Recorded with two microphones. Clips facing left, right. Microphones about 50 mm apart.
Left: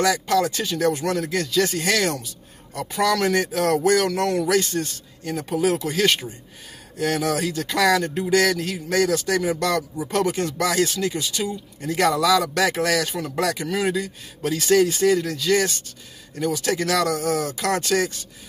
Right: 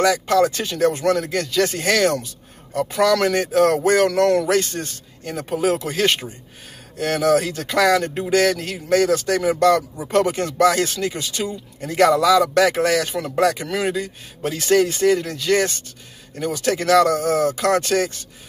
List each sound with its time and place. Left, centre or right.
0.0 s speech: right
2.2 s a sound: right
3.2 s speech: right
4.1 s speech: right